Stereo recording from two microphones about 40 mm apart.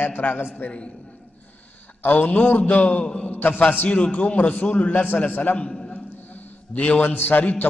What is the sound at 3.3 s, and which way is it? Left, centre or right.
A man's voice, left.